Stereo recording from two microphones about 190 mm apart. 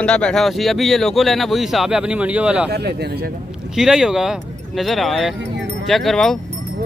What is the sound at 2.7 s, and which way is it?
Speech, 60° right (ahead or behind).